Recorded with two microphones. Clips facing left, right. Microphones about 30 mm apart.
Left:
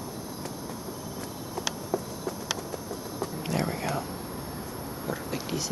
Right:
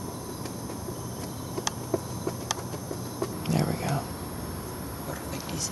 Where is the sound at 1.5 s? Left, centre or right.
Centre.